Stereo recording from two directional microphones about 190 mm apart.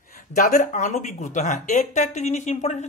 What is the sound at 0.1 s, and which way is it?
A man's voice, 45° left (ahead or behind).